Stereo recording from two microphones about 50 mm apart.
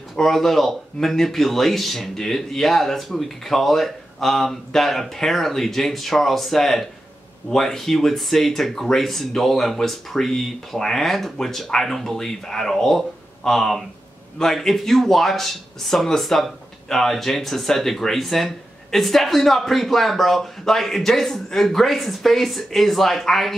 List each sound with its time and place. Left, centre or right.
0.1 s speech: centre